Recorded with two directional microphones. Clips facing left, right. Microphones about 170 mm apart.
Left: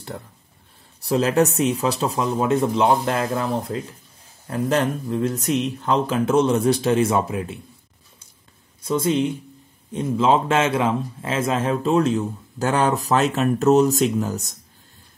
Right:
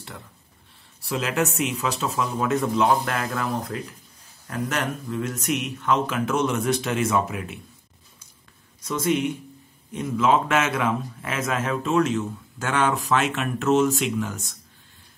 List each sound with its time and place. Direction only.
1.0 s a man's voice: 35° left (ahead or behind)
8.8 s a man's voice: 25° left (ahead or behind)